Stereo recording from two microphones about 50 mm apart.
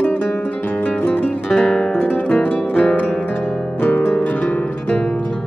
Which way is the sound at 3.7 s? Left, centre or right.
Left.